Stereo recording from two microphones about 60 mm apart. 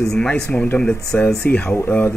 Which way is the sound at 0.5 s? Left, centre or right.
Left.